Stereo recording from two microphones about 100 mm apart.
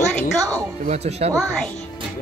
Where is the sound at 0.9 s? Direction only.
90° right.